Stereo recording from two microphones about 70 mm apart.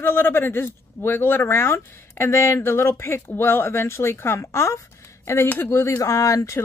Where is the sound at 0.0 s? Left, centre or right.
Left.